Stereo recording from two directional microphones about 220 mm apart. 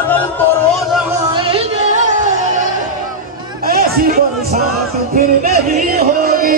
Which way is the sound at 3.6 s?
45° right (ahead or behind).